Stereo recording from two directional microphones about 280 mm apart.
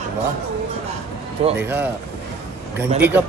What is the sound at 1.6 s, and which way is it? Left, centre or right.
Speech, centre.